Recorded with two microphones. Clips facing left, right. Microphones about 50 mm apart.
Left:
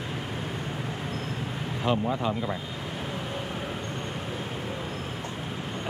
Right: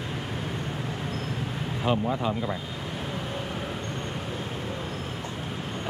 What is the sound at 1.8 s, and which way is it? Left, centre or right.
Speech, centre.